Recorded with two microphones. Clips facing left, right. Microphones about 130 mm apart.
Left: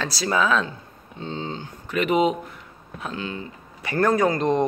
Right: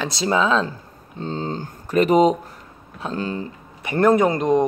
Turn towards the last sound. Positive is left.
turn(degrees=-15)  # may be behind; listen again after turning